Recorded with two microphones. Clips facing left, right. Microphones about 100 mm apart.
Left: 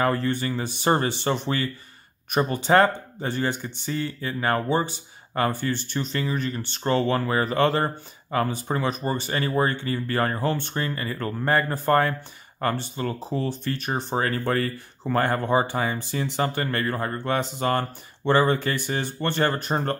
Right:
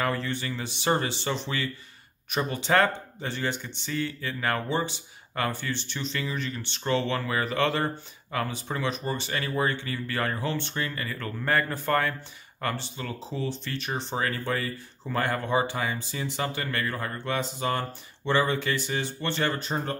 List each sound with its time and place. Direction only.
0.0 s speech: 45° left (ahead or behind)
4.0 s speech: 30° left (ahead or behind); by 10.8 s 45° left (ahead or behind)
10.8 s speech: 30° left (ahead or behind); by 15.2 s 55° left (ahead or behind)
15.2 s speech: 40° left (ahead or behind); by 20.0 s 55° left (ahead or behind)